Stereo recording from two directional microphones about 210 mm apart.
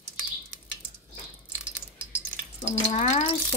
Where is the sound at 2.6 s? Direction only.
30° left (ahead or behind).